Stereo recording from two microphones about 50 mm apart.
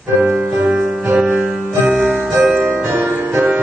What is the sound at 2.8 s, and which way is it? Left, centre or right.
Music, right.